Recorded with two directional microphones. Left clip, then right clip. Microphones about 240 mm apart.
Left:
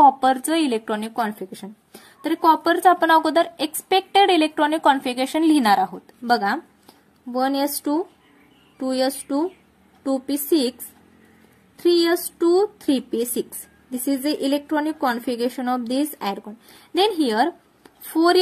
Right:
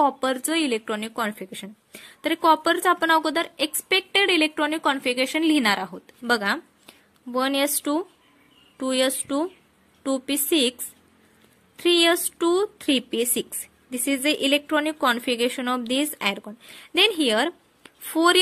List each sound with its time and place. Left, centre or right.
0.0 s a woman's voice: right
12.4 s a woman's voice: right